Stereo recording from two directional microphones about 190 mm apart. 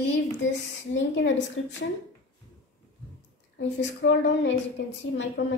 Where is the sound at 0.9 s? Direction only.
75° left (ahead or behind).